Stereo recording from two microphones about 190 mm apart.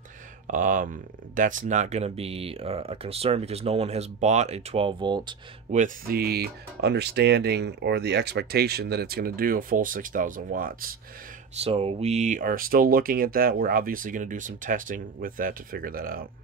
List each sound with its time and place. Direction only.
0.5 s speech: 45° right (ahead or behind); by 5.3 s 25° right (ahead or behind)
5.7 s speech: 45° right (ahead or behind)
11.6 s speech: 30° right (ahead or behind); by 16.3 s 50° right (ahead or behind)